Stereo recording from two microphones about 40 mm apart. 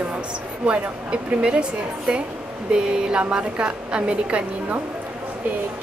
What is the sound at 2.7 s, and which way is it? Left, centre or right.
A woman's voice, right.